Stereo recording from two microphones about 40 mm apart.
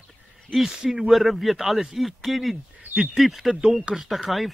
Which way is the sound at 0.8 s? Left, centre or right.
Centre.